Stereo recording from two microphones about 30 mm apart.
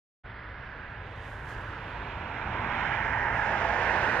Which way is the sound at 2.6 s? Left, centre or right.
Left.